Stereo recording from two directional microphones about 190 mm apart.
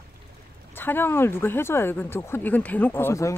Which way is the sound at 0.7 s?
10° left (ahead or behind).